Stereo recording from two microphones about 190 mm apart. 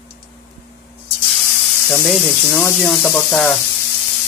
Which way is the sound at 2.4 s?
5° left (ahead or behind).